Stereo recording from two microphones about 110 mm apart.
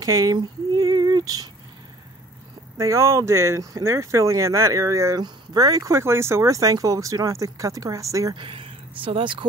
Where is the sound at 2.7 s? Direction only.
30° right (ahead or behind).